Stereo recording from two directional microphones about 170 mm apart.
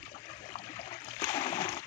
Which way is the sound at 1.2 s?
35° left (ahead or behind).